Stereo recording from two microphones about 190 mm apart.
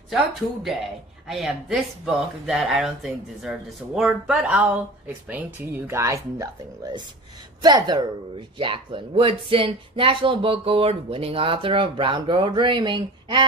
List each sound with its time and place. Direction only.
0.1 s speech: centre (ahead or behind); by 13.5 s 25° right (ahead or behind)